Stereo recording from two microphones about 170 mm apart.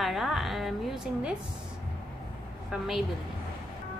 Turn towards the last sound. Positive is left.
turn(degrees=-5)  # may be behind; listen again after turning